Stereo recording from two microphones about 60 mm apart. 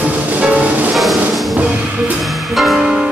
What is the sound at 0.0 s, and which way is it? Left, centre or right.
Music, right.